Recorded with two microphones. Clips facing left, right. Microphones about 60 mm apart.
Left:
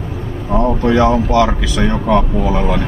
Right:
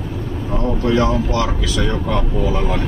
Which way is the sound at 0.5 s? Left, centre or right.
Left.